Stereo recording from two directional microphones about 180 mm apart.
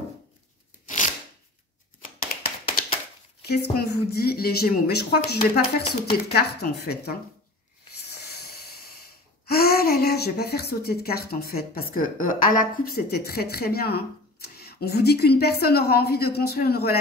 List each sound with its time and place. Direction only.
0.8 s shuffling cards: 45° left (ahead or behind)
3.4 s speech: 65° left (ahead or behind)
8.1 s a sound: 60° left (ahead or behind)